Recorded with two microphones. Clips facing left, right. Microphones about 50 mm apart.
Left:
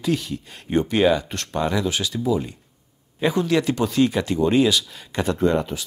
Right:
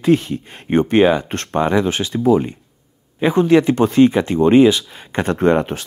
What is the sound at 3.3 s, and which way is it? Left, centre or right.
Speech, right.